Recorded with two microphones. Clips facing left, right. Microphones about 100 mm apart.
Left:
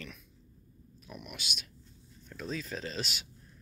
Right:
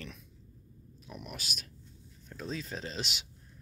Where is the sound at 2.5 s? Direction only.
25° right (ahead or behind).